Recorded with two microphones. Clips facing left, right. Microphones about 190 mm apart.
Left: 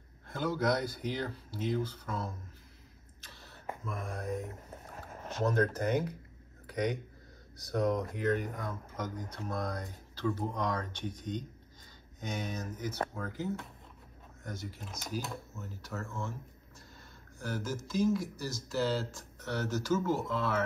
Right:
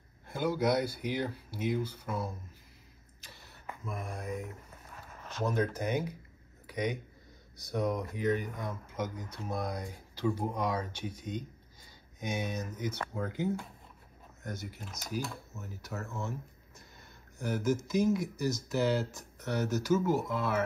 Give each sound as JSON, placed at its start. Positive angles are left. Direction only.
{"t": 0.3, "sound": "speech", "side_deg": -10}
{"t": 3.8, "sound": "speech", "side_deg": -5}
{"t": 14.4, "sound": "speech", "side_deg": -5}
{"t": 17.4, "sound": "speech", "side_deg": -20}